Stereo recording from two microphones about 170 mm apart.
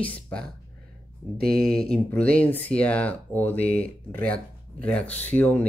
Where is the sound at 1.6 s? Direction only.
5° left (ahead or behind).